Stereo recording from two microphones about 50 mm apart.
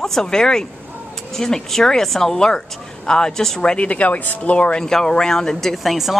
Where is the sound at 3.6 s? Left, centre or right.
Left.